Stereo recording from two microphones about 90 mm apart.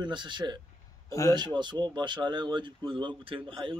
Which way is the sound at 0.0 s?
60° right (ahead or behind).